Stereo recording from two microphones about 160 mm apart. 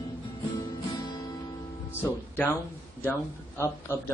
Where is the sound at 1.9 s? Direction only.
10° left (ahead or behind).